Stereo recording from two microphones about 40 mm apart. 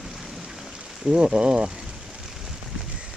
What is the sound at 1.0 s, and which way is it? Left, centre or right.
Speech, centre.